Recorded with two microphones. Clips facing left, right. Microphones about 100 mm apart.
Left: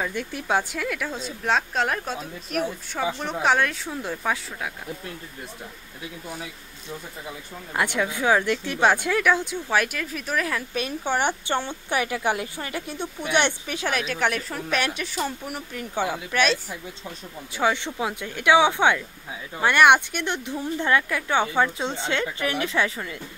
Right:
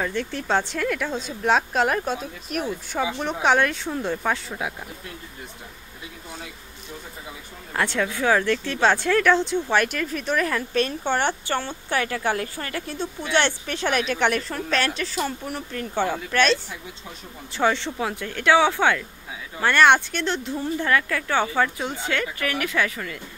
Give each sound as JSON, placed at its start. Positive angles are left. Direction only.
{"t": 0.0, "sound": "speech", "side_deg": 10}
{"t": 7.7, "sound": "a woman's voice", "side_deg": 15}
{"t": 17.6, "sound": "a woman's voice", "side_deg": 10}